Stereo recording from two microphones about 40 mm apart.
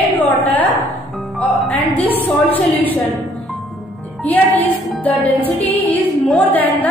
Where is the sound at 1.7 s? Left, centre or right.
Left.